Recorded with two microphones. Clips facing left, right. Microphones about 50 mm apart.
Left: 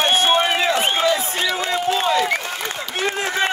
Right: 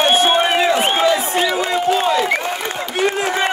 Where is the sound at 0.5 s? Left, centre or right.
Right.